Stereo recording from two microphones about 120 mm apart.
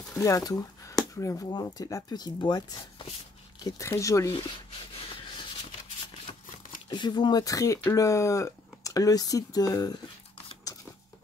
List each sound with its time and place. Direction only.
0.2 s speech: 30° left (ahead or behind)
3.6 s speech: 25° left (ahead or behind)
6.9 s speech: 40° left (ahead or behind)